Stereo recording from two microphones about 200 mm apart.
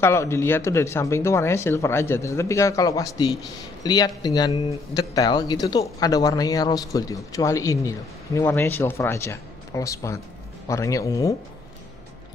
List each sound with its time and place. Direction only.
0.0 s speech: 15° left (ahead or behind)